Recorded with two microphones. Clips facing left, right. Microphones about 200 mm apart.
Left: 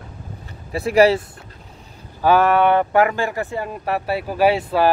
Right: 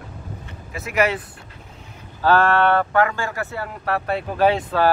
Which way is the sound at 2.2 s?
10° left (ahead or behind).